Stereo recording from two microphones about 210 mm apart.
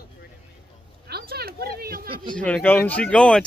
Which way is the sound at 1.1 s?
50° right (ahead or behind).